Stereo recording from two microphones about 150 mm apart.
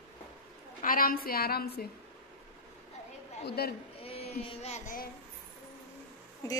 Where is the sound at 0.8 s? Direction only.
70° left (ahead or behind); by 1.9 s 90° left.